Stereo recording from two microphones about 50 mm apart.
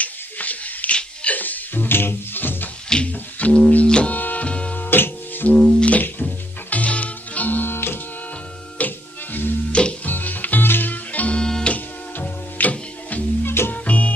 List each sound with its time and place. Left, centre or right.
0.0 s a sound: left
0.9 s music: left
3.1 s music: left
3.8 s music: centre
4.1 s music: left
4.7 s music: left
5.8 s music: left
7.7 s music: left
8.7 s music: left
9.7 s music: left
10.0 s music: left
11.3 s music: centre
11.7 s music: left